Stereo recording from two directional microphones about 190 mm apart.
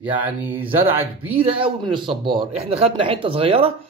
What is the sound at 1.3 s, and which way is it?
A man's voice, 30° right (ahead or behind).